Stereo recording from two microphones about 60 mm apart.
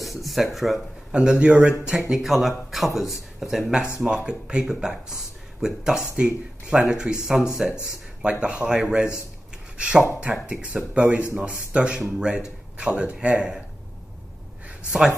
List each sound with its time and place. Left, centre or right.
0.0 s a sound: centre
0.7 s a man's voice: centre
14.9 s speech: centre